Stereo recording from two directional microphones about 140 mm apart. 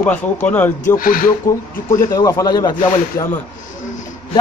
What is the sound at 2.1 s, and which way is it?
A man's voice, 20° left (ahead or behind).